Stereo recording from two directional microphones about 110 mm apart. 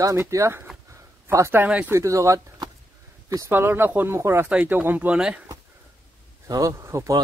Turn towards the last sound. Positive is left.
turn(degrees=-25)  # may be behind; listen again after turning